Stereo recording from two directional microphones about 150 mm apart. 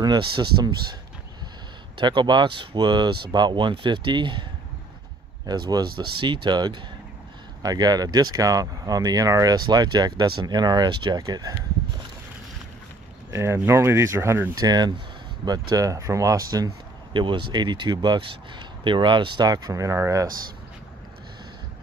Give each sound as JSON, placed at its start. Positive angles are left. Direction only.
{"t": 0.0, "sound": "speech", "side_deg": -30}
{"t": 2.0, "sound": "speech", "side_deg": -30}
{"t": 5.5, "sound": "speech", "side_deg": -25}
{"t": 13.3, "sound": "speech", "side_deg": -15}